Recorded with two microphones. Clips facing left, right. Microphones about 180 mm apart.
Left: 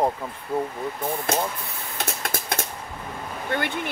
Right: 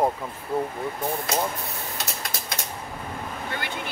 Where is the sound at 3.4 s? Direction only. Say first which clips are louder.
Left 8 dB; 55° left (ahead or behind).